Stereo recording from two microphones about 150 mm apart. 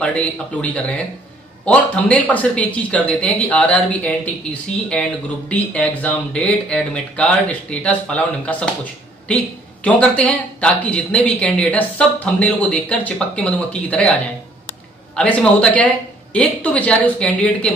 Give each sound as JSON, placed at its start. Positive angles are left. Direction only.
{"t": 0.0, "sound": "speech", "side_deg": 10}
{"t": 5.5, "sound": "speech", "side_deg": 10}
{"t": 9.8, "sound": "speech", "side_deg": 10}